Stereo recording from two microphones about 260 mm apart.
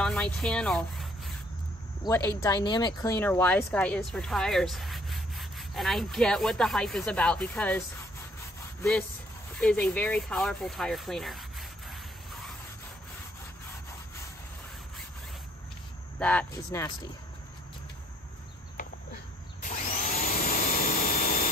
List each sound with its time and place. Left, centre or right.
0.0 s speech: centre
2.0 s speech: centre
9.6 s speech: centre
11.9 s a sound: centre
16.2 s speech: centre
19.6 s vacuum cleaner: left